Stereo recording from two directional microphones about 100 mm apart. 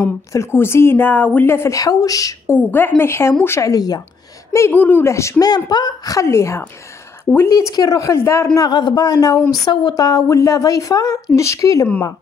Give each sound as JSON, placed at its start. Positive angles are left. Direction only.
{"t": 0.0, "sound": "speech", "side_deg": 25}
{"t": 2.4, "sound": "a woman's voice", "side_deg": 20}
{"t": 3.7, "sound": "a woman's voice", "side_deg": 40}
{"t": 4.5, "sound": "speech", "side_deg": 25}
{"t": 5.7, "sound": "a woman's voice", "side_deg": 45}
{"t": 8.5, "sound": "a woman's voice", "side_deg": 45}